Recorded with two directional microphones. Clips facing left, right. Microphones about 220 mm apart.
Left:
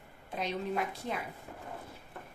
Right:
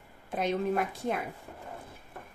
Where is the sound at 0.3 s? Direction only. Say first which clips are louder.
Right 6 dB; 50° right (ahead or behind).